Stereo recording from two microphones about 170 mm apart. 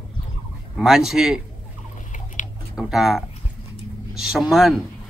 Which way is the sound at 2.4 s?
50° left (ahead or behind).